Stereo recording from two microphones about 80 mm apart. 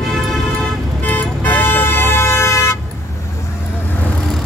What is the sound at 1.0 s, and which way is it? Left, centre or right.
Vehicle, left.